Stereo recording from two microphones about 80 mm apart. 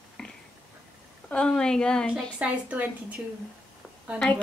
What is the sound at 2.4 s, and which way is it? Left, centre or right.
Speech, centre.